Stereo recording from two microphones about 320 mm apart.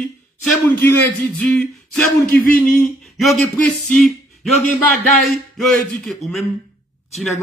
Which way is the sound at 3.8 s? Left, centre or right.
Centre.